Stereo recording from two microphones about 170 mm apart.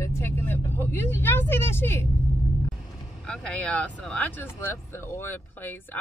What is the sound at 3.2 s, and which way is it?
Speech, 5° left (ahead or behind).